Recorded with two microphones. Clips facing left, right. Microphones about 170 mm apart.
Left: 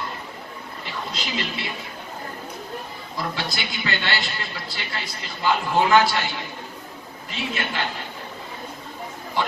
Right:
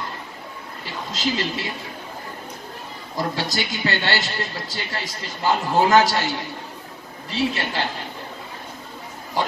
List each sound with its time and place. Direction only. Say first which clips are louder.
1.1 s a man's voice: right 8 dB; 40° right (ahead or behind)
3.2 s a man's voice: right 4 dB; 40° right (ahead or behind)